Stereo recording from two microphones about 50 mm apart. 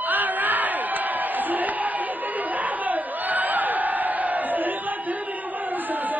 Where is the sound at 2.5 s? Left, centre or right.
Right.